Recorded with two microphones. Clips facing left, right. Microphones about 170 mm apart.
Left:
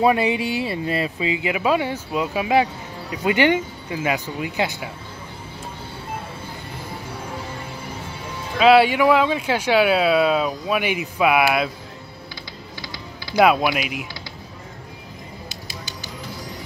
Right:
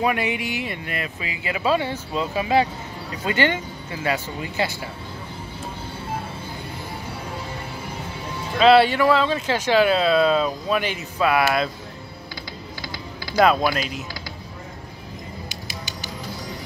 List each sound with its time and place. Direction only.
0.0 s speech: 30° left (ahead or behind)
8.5 s speech: 10° left (ahead or behind)
13.4 s speech: 10° left (ahead or behind)
15.4 s music: 15° right (ahead or behind)